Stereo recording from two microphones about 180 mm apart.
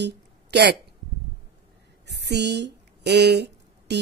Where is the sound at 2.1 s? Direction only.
70° right (ahead or behind).